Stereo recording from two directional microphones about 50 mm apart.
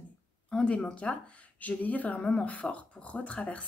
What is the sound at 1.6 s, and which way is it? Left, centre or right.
Speech, left.